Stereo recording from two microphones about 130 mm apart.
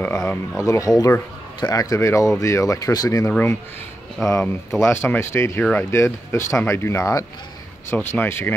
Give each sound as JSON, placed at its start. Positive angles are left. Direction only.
{"t": 0.3, "sound": "speech", "side_deg": 25}
{"t": 3.3, "sound": "speech", "side_deg": 15}
{"t": 4.2, "sound": "speech", "side_deg": 5}
{"t": 4.8, "sound": "speech", "side_deg": 15}
{"t": 5.6, "sound": "speech", "side_deg": 10}
{"t": 5.9, "sound": "speech", "side_deg": 20}